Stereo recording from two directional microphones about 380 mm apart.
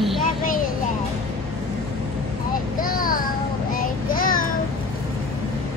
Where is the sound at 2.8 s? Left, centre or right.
Left.